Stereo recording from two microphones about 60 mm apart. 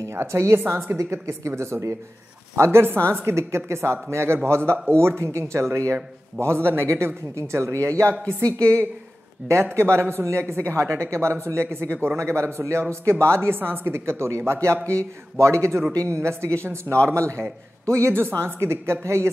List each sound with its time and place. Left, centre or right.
0.1 s speech: right
7.3 s speech: right